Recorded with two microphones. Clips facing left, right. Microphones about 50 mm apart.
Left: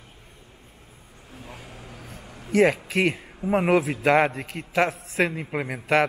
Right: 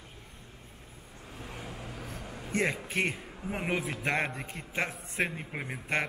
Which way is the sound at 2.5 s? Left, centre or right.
Left.